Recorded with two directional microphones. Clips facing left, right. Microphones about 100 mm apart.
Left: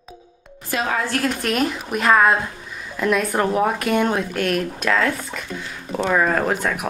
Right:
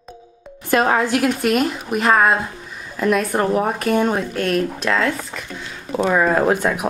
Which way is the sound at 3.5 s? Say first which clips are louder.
Right 1 dB; centre (ahead or behind).